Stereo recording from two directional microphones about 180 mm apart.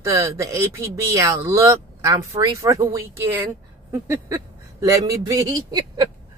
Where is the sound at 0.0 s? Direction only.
15° right (ahead or behind).